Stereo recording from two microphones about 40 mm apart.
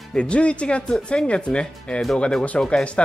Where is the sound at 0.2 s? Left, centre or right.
Left.